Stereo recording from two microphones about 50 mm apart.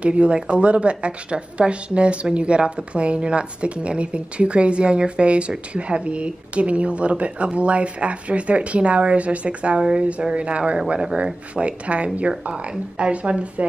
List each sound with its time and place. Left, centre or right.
0.0 s a woman's voice: right